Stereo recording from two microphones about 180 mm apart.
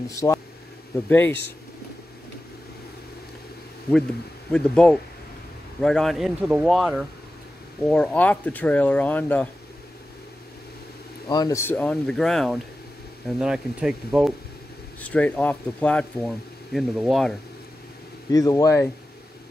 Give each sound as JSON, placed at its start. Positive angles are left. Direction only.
{"t": 0.1, "sound": "speech", "side_deg": 15}
{"t": 4.5, "sound": "speech", "side_deg": 5}
{"t": 11.2, "sound": "speech", "side_deg": 20}
{"t": 15.0, "sound": "speech", "side_deg": 10}
{"t": 18.3, "sound": "speech", "side_deg": 20}